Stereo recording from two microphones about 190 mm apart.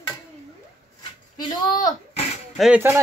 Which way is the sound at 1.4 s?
20° left (ahead or behind).